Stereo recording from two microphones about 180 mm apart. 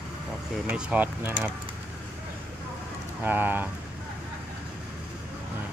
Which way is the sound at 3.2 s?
10° right (ahead or behind).